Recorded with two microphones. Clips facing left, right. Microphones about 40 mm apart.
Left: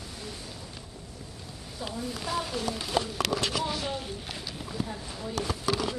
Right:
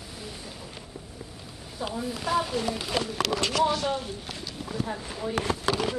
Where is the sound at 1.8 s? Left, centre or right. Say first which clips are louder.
Right 4 dB; centre.